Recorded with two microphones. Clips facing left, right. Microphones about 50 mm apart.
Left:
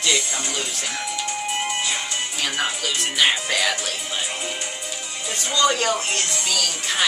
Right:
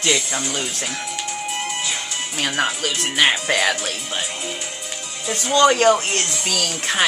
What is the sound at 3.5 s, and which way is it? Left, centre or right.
Speech, right.